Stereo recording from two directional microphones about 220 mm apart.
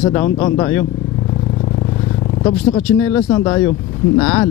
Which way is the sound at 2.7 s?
10° left (ahead or behind).